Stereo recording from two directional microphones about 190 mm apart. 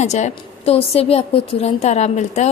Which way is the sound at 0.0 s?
35° left (ahead or behind).